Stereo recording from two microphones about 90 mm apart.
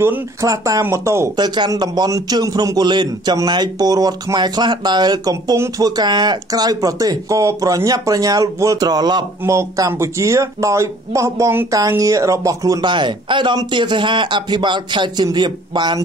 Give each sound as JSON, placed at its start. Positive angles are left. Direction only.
{"t": 0.4, "sound": "speech", "side_deg": -40}
{"t": 1.3, "sound": "speech", "side_deg": -55}
{"t": 9.5, "sound": "speech", "side_deg": -35}
{"t": 12.8, "sound": "speech", "side_deg": -60}